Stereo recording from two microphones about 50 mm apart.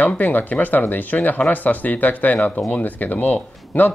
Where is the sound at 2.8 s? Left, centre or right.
Left.